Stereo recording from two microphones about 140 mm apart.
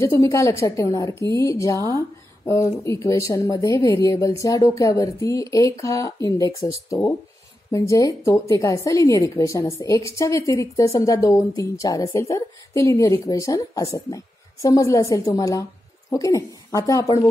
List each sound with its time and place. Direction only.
0.0 s a woman's voice: 25° left (ahead or behind)
7.7 s a woman's voice: 25° left (ahead or behind)